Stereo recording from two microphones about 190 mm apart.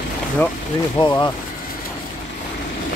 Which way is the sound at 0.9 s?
20° left (ahead or behind).